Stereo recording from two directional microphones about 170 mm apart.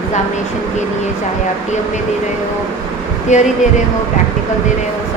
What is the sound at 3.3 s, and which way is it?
Speech, 45° left (ahead or behind).